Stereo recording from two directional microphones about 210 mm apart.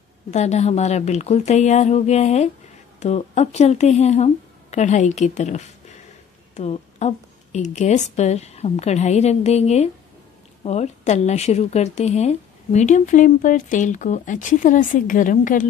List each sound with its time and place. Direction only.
0.3 s a woman's voice: 35° left (ahead or behind)